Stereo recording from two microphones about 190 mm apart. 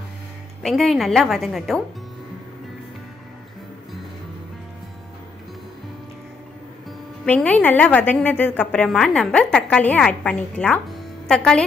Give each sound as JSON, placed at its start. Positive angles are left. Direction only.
{"t": 0.6, "sound": "a woman's voice", "side_deg": 0}
{"t": 7.2, "sound": "a woman's voice", "side_deg": 10}